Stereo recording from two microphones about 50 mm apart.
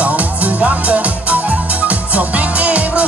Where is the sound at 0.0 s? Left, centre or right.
Right.